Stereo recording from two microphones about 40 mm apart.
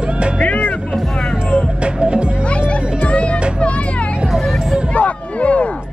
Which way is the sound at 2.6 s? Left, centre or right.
Left.